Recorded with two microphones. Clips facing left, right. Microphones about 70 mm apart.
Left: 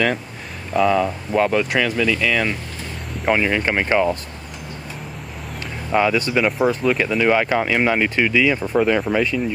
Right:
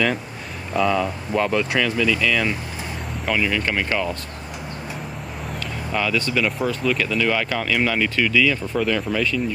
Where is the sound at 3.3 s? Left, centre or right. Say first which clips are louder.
Left 4 dB; left.